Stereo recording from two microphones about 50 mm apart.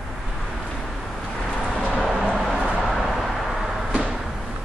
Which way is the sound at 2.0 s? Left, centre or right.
Centre.